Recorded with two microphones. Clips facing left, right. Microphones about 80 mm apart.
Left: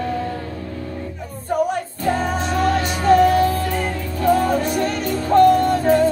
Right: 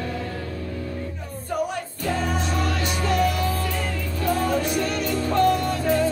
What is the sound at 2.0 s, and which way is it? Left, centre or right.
Music, left.